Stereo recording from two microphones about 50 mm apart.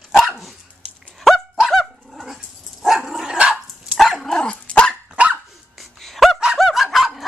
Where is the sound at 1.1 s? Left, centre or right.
Centre.